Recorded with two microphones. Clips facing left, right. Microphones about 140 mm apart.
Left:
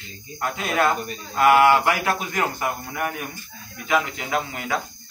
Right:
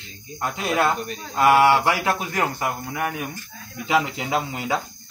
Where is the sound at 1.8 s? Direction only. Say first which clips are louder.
Even; 25° right (ahead or behind).